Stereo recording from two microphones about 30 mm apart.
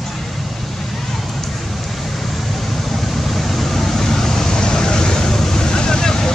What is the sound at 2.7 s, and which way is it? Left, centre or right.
Vehicle, centre.